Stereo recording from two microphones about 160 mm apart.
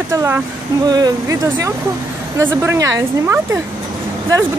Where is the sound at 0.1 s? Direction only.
15° right (ahead or behind).